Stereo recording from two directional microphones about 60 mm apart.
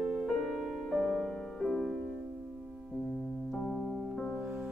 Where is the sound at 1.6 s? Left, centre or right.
Centre.